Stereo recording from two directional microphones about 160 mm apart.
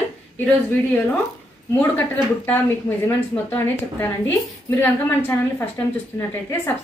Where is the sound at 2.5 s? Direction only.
10° left (ahead or behind).